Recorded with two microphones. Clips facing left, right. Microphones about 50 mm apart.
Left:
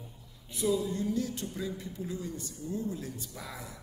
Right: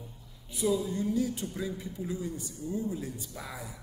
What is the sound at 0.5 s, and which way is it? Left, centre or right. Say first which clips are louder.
Speech: right 1 dB; centre.